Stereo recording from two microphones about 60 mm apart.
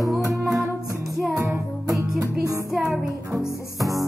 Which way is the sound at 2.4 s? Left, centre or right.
Right.